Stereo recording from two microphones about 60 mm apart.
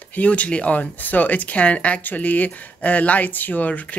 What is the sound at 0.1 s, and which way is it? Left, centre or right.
Speech, left.